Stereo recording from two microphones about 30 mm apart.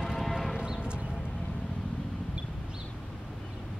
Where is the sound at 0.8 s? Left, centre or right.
Right.